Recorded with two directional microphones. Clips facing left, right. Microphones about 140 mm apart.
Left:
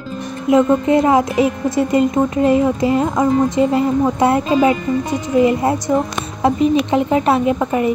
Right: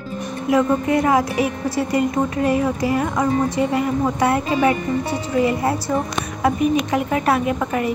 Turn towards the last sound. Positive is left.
turn(degrees=20)  # may be behind; listen again after turning